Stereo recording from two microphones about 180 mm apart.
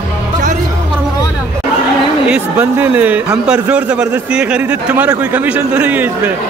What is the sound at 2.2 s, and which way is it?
A man's voice, 5° right (ahead or behind).